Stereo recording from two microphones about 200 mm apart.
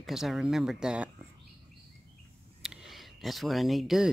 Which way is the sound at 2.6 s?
Centre (ahead or behind).